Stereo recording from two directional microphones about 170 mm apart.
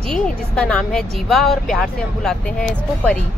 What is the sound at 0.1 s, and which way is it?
A woman's voice, 5° left (ahead or behind).